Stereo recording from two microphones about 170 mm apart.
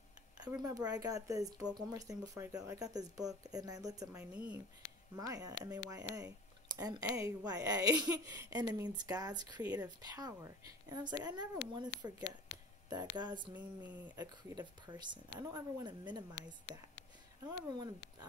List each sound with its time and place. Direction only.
0.6 s speech: 20° right (ahead or behind)
4.2 s speech: 10° right (ahead or behind)
5.1 s speech: 20° right (ahead or behind)
9.6 s speech: 10° right (ahead or behind)
9.8 s speech: 20° right (ahead or behind)
13.5 s speech: 10° right (ahead or behind)
14.1 s speech: 25° right (ahead or behind)